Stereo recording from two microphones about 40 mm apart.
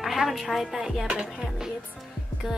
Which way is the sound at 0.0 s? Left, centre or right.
Centre.